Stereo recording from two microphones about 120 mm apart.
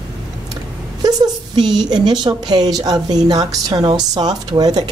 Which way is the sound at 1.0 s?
35° right (ahead or behind).